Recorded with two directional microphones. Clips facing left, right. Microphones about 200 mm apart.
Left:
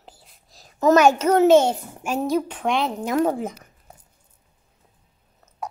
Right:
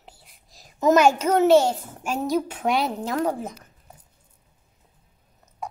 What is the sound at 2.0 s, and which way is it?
Speech, centre (ahead or behind).